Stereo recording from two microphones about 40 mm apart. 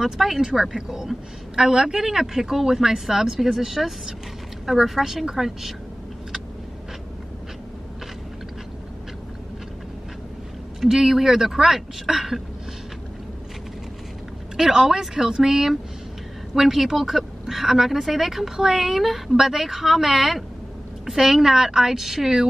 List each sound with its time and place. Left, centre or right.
0.0 s a woman's voice: centre
10.8 s a woman's voice: centre
14.6 s a woman's voice: centre